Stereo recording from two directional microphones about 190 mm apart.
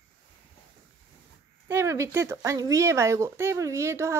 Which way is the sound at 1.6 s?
15° right (ahead or behind).